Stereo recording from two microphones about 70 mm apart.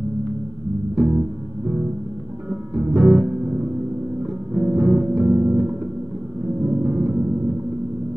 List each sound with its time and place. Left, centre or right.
0.9 s music: centre
2.5 s music: centre